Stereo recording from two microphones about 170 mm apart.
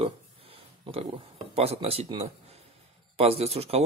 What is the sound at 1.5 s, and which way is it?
A man's voice, 35° right (ahead or behind).